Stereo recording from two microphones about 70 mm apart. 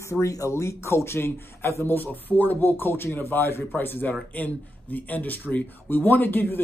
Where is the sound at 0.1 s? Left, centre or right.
Left.